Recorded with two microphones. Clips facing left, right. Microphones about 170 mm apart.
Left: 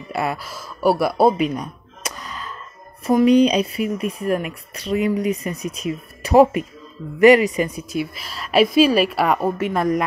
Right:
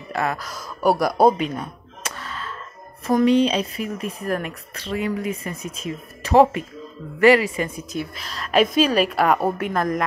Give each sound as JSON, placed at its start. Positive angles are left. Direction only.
{"t": 0.1, "sound": "speech", "side_deg": 10}
{"t": 1.6, "sound": "a sound", "side_deg": 15}
{"t": 3.1, "sound": "a woman's voice", "side_deg": 15}